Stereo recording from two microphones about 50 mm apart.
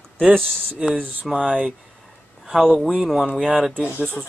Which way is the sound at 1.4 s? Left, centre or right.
Right.